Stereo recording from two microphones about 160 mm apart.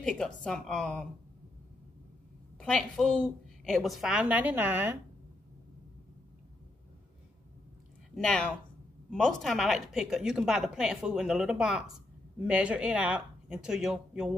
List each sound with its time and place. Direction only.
0.0 s a woman's voice: 5° left (ahead or behind)
2.6 s a woman's voice: 5° left (ahead or behind); by 4.9 s 10° right (ahead or behind)
8.2 s a woman's voice: 5° left (ahead or behind)